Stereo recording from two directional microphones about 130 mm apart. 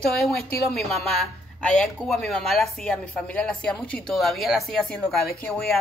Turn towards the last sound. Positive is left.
turn(degrees=5)  # may be behind; listen again after turning